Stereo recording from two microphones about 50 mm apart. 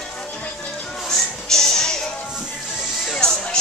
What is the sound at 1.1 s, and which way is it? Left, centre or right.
Music, centre.